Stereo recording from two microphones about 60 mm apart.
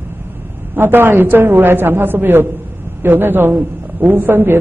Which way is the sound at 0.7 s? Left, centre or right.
Right.